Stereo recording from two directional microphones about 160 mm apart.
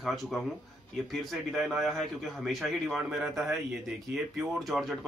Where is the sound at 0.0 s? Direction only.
Centre (ahead or behind).